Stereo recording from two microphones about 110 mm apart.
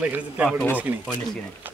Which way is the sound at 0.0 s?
15° right (ahead or behind).